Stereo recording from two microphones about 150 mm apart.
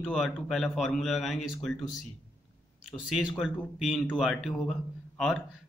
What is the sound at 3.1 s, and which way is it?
A man's voice, centre (ahead or behind).